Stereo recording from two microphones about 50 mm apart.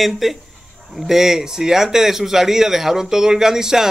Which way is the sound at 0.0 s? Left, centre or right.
Centre.